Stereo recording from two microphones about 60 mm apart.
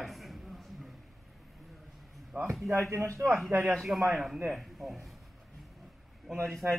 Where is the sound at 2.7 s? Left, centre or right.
Right.